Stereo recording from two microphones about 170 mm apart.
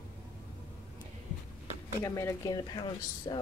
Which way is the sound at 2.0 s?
15° left (ahead or behind).